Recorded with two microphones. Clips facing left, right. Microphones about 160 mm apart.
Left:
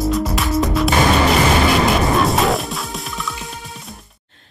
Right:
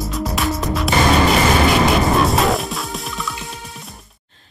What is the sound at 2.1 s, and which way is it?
Music, centre (ahead or behind).